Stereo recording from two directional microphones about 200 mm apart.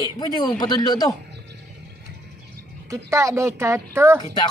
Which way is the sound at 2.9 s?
15° right (ahead or behind).